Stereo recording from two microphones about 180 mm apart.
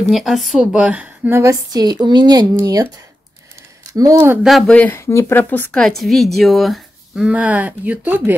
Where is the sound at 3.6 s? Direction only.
20° right (ahead or behind).